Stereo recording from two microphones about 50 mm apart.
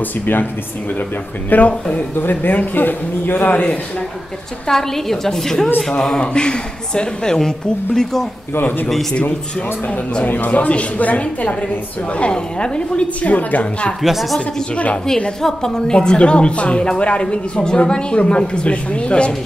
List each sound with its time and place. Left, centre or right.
0.2 s a man's voice: left
1.5 s a man's voice: left
4.6 s speech: centre
8.5 s a man's voice: left
10.2 s a woman's voice: left
14.0 s speech: centre
14.4 s a woman's voice: left